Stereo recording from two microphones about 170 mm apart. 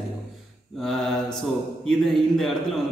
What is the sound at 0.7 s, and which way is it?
A man's voice, centre (ahead or behind).